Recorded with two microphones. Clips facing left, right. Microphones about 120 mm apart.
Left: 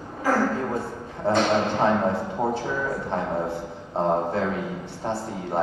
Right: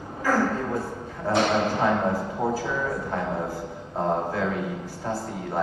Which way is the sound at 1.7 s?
25° left (ahead or behind).